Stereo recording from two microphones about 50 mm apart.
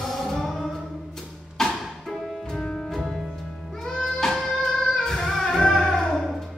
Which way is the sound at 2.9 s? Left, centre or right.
Centre.